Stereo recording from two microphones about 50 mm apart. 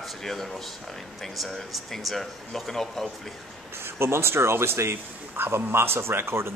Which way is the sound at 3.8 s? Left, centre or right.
Right.